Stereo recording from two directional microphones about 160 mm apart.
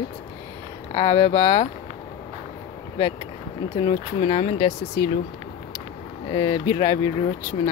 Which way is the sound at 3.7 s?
35° left (ahead or behind).